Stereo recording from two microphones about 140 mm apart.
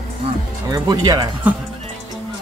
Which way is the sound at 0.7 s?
30° right (ahead or behind).